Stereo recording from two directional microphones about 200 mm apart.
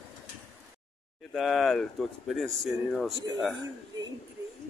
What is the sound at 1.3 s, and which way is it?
Speech, centre (ahead or behind).